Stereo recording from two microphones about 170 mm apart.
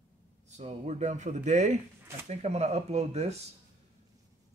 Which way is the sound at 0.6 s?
40° right (ahead or behind).